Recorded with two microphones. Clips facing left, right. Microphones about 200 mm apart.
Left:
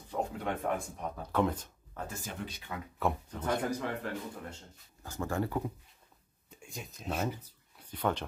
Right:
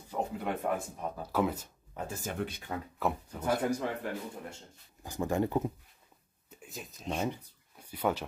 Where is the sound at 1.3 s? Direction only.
5° right (ahead or behind).